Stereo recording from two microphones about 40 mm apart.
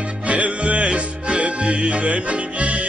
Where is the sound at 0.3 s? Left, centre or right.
Right.